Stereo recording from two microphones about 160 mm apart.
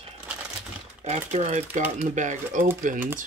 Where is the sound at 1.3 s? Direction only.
45° right (ahead or behind).